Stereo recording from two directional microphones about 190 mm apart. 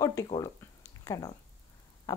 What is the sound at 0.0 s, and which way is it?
A woman's voice, 15° left (ahead or behind).